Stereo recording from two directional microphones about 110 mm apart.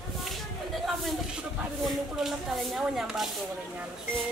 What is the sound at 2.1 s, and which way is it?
Speech, centre (ahead or behind).